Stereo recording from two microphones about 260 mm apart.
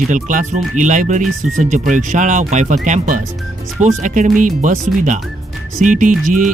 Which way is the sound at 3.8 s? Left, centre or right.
Right.